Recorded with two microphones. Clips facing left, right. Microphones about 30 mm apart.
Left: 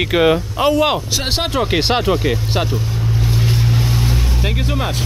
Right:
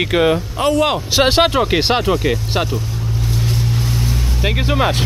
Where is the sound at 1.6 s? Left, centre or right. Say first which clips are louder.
Right 1 dB; centre.